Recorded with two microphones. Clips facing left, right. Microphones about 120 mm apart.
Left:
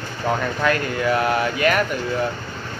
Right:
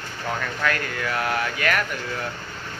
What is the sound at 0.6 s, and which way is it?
Speech, 20° left (ahead or behind).